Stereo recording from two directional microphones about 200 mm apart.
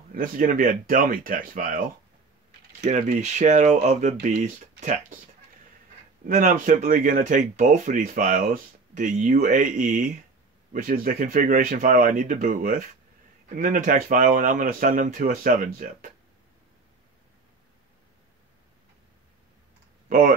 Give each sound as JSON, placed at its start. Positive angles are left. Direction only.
{"t": 0.1, "sound": "speech", "side_deg": -45}
{"t": 6.2, "sound": "speech", "side_deg": -40}
{"t": 20.1, "sound": "speech", "side_deg": -45}